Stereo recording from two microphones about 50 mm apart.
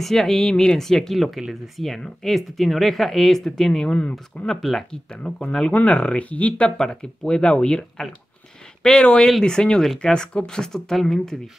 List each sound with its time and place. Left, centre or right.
0.0 s speech: centre
5.1 s speech: left
6.8 s speech: centre
8.8 s speech: centre